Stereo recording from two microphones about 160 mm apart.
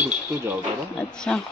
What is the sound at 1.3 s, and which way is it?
Speech, 5° left (ahead or behind).